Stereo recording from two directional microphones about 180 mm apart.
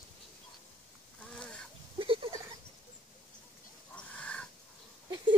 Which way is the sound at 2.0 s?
30° right (ahead or behind).